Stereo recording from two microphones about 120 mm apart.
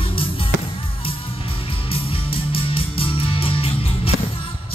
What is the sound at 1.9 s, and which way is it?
Music, 50° left (ahead or behind).